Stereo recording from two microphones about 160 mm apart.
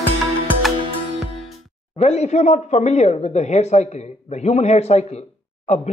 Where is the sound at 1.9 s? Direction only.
45° left (ahead or behind).